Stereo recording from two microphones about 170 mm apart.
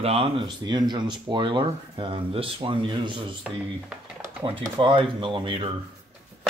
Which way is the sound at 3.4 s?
Centre (ahead or behind).